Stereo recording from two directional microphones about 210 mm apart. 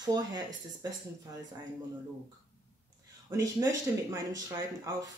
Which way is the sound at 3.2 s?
15° right (ahead or behind).